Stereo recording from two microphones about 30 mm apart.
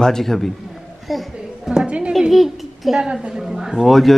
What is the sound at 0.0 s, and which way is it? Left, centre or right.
Speech, centre.